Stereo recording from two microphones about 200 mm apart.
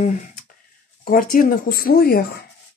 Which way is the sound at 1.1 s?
45° left (ahead or behind).